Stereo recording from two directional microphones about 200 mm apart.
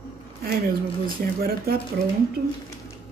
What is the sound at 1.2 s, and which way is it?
Speech, 50° right (ahead or behind).